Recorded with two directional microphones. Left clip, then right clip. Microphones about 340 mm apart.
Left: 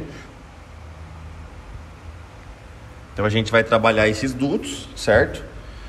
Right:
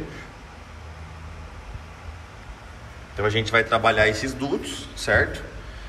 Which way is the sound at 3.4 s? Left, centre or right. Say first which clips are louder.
Left 4 dB; centre.